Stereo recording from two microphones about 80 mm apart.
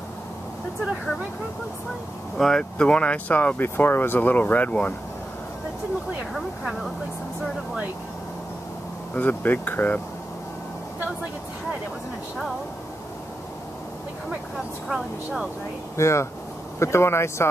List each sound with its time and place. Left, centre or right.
2.3 s speech: centre
9.1 s speech: left
16.0 s speech: left